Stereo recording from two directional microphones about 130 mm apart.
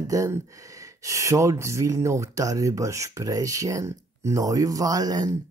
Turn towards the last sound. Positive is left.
turn(degrees=-30)  # may be behind; listen again after turning